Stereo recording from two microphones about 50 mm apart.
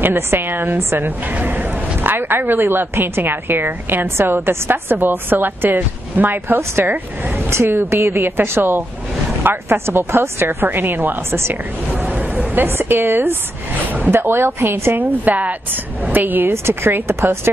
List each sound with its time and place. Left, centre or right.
0.0 s a woman's voice: right
4.2 s a woman's voice: right
7.4 s a woman's voice: right
11.9 s a sound: right
12.6 s a woman's voice: right
16.6 s speech: right